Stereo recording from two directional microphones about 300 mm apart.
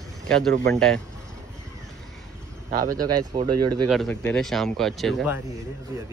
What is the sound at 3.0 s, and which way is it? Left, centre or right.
Speech, centre.